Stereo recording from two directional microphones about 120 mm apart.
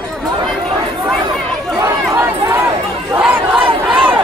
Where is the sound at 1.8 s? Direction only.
25° right (ahead or behind).